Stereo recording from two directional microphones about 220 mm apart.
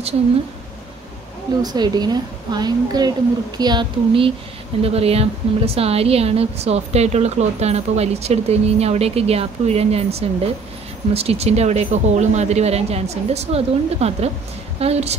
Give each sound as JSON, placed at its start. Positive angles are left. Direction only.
{"t": 1.6, "sound": "a woman's voice", "side_deg": -20}